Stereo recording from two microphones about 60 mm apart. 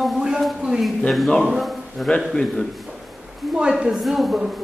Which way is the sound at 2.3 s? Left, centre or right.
Centre.